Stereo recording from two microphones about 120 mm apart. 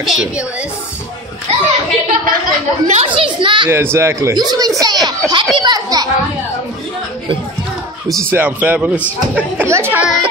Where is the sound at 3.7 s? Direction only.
20° right (ahead or behind).